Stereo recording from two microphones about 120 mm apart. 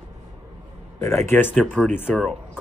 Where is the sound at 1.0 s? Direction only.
25° left (ahead or behind).